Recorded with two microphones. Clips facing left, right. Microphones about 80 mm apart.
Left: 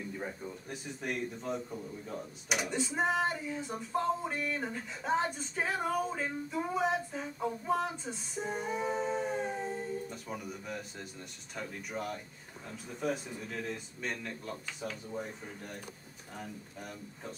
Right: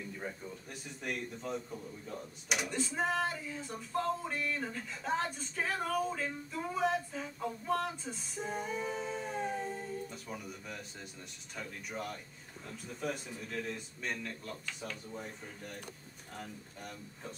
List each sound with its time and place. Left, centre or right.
0.7 s a man's voice: centre
8.9 s howl: left
9.2 s a man's voice: centre